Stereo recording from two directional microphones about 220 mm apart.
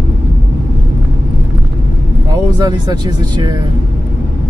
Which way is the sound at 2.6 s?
20° right (ahead or behind).